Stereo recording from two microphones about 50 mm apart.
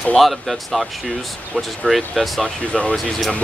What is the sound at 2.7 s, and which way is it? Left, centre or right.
Speech, left.